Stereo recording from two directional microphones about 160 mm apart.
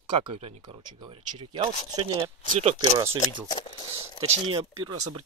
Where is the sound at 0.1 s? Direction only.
35° right (ahead or behind).